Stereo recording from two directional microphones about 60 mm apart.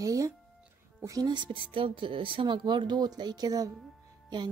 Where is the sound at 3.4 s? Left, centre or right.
Right.